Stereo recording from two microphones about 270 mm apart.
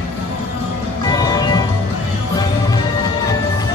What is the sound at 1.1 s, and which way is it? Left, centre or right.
Music, centre.